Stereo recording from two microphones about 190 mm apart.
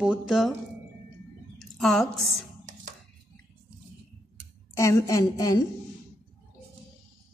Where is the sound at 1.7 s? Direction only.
Centre (ahead or behind).